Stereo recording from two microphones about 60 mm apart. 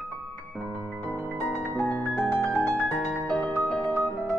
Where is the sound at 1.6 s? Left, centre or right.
Left.